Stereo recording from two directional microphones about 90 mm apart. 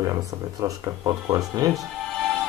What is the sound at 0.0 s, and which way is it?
Speech, 45° right (ahead or behind).